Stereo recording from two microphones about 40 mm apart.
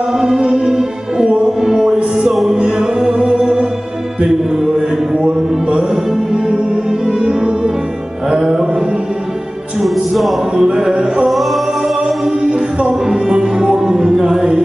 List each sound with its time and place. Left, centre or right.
0.2 s music: centre
6.3 s music: centre
9.8 s music: centre
10.5 s a sound: centre
11.2 s singing: centre
12.0 s music: right